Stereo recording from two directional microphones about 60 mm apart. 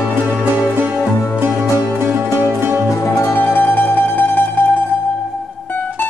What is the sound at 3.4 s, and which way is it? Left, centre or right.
Mandolin, left.